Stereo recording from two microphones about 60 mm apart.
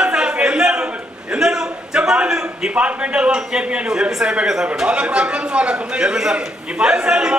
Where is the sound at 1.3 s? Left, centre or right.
Centre.